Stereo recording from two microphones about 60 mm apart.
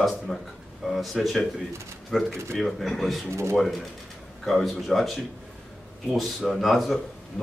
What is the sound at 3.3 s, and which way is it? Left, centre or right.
Speech, right.